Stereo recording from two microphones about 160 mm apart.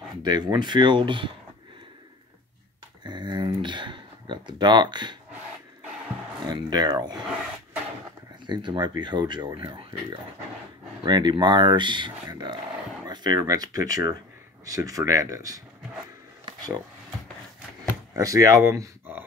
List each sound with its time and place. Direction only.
0.2 s speech: 25° right (ahead or behind)
3.0 s speech: 25° right (ahead or behind)
6.4 s speech: 25° right (ahead or behind)
8.5 s speech: 30° right (ahead or behind)
11.1 s speech: 25° right (ahead or behind)
16.4 s a sound: 25° right (ahead or behind)
18.1 s speech: 20° right (ahead or behind)